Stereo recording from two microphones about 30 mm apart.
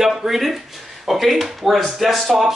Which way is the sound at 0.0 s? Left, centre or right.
Centre.